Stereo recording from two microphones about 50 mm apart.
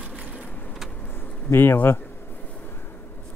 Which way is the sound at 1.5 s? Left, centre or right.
Left.